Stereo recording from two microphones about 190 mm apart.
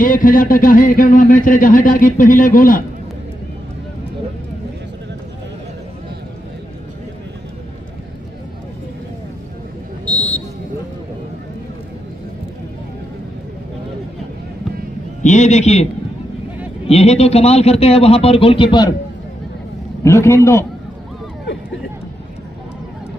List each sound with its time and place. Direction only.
0.0 s speech: 45° left (ahead or behind)
10.0 s a sound: 5° left (ahead or behind)
15.2 s speech: 35° left (ahead or behind)
20.0 s a man's voice: 15° left (ahead or behind)